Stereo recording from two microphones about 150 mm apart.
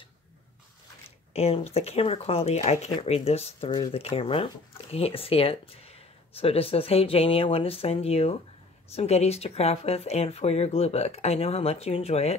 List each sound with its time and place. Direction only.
1.3 s speech: 45° left (ahead or behind)
3.7 s speech: 30° left (ahead or behind)
4.0 s speech: 40° left (ahead or behind)